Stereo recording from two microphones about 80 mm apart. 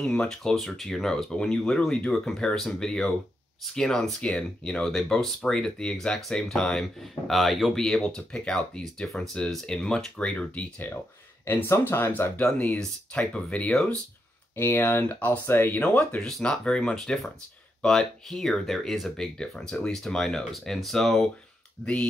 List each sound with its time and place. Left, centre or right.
0.0 s speech: centre
14.5 s speech: left
16.2 s speech: centre